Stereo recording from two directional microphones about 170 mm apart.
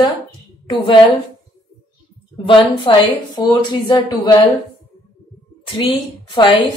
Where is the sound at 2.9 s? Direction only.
30° left (ahead or behind).